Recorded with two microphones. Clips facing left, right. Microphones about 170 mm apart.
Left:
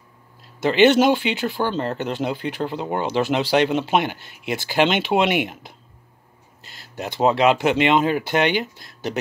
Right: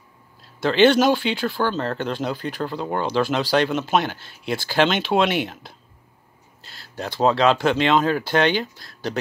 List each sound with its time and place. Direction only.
0.6 s speech: 15° left (ahead or behind)